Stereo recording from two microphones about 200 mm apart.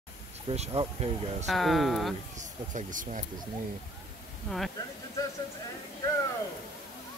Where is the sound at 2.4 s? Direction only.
40° right (ahead or behind).